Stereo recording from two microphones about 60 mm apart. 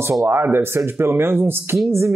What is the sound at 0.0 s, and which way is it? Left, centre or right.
Speech, right.